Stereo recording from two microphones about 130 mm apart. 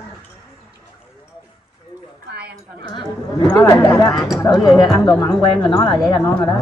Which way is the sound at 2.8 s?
35° left (ahead or behind).